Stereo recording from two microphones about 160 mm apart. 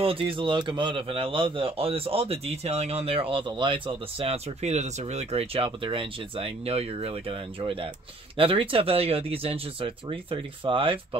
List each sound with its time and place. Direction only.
0.0 s a man's voice: 35° right (ahead or behind)